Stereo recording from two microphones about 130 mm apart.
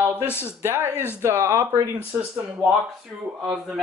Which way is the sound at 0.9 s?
15° left (ahead or behind).